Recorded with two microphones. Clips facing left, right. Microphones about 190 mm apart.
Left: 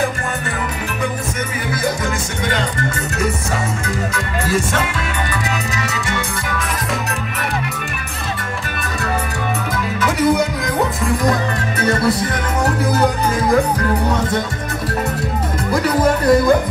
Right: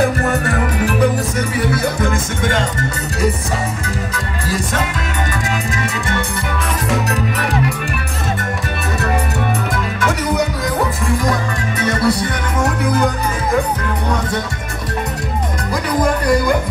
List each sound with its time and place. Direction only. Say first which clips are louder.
1.7 s music: right 3 dB; 50° right (ahead or behind)
4.1 s speech: left 3 dB; 35° right (ahead or behind)
16.0 s speech: left 2 dB; 5° left (ahead or behind)